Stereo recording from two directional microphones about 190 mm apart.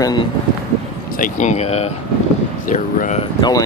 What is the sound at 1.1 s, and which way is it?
Speech, 40° left (ahead or behind).